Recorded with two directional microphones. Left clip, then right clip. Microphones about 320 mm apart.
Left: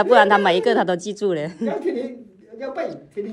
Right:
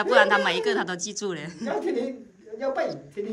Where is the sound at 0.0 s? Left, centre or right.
Centre.